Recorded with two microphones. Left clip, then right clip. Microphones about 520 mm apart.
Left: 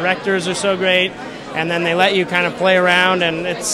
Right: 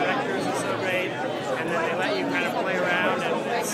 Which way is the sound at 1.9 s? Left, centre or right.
Left.